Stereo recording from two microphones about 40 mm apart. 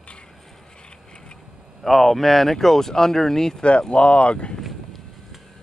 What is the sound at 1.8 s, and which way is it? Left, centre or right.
Speech, centre.